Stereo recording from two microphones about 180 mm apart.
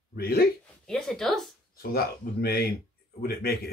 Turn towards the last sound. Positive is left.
turn(degrees=60)  # may be behind; listen again after turning